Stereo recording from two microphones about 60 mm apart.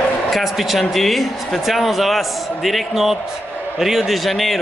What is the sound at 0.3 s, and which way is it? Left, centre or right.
Speech, centre.